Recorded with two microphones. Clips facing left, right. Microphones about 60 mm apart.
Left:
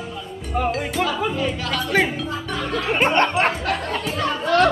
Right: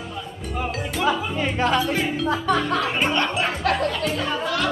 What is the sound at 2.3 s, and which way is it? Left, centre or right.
Speech, right.